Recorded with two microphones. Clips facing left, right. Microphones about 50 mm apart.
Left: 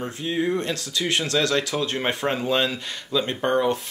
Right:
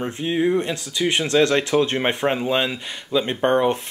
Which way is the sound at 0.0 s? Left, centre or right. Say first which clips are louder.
Right 4 dB; right.